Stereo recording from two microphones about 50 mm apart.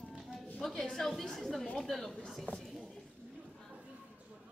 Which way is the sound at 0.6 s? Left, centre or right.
Centre.